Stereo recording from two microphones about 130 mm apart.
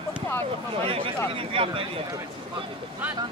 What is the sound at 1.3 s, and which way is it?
Speech, 45° right (ahead or behind).